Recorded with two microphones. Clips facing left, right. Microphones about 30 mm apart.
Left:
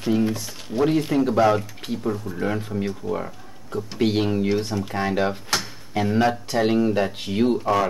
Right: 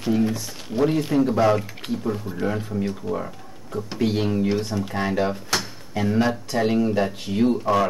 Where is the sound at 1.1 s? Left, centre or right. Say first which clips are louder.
Right 1 dB; left.